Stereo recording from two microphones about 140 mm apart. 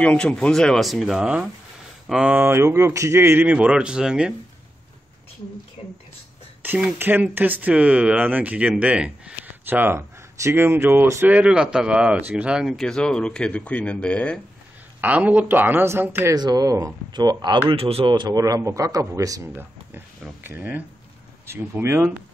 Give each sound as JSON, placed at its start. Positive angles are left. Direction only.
{"t": 0.0, "sound": "speech", "side_deg": 10}
{"t": 6.6, "sound": "speech", "side_deg": -15}
{"t": 15.0, "sound": "speech", "side_deg": -10}
{"t": 16.3, "sound": "a man's voice", "side_deg": -30}
{"t": 17.6, "sound": "a man's voice", "side_deg": -45}
{"t": 20.4, "sound": "speech", "side_deg": -15}